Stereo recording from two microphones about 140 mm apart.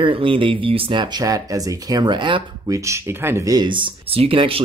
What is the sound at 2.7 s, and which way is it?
Speech, 20° right (ahead or behind).